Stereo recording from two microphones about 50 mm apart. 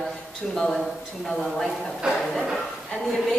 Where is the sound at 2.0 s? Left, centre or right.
Centre.